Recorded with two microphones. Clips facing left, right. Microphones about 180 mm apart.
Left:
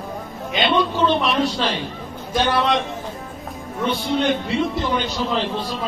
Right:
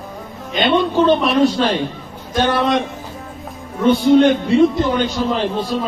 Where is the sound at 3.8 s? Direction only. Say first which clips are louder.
Right 9 dB; 45° right (ahead or behind).